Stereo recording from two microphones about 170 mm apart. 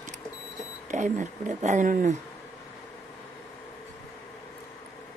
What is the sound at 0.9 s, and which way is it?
Speech, 45° right (ahead or behind).